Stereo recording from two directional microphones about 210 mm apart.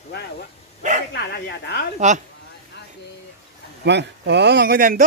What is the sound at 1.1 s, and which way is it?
Bow-wow, 50° left (ahead or behind).